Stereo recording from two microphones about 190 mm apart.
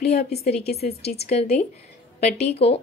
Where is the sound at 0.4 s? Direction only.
35° left (ahead or behind).